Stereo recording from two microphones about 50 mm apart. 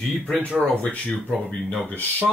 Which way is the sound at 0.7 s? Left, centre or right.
Left.